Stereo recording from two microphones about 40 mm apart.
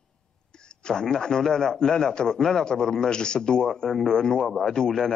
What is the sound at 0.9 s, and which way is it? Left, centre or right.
A man's voice, centre.